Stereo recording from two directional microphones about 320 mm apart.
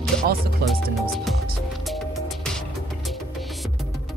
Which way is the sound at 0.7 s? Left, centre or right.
Centre.